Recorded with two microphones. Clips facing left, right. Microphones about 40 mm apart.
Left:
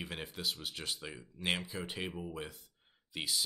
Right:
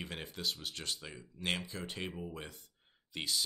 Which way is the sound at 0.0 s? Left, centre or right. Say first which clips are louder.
Even; centre.